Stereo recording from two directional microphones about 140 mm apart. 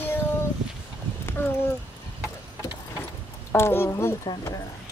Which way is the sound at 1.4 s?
15° left (ahead or behind).